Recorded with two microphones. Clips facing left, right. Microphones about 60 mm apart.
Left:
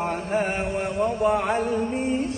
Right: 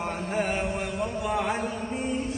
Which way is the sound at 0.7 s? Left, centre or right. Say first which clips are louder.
Left 6 dB; left.